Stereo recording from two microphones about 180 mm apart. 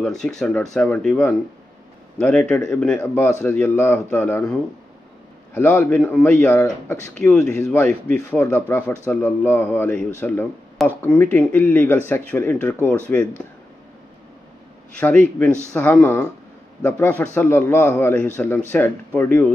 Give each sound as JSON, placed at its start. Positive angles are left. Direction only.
{"t": 0.0, "sound": "a man's voice", "side_deg": 5}
{"t": 15.0, "sound": "speech", "side_deg": 10}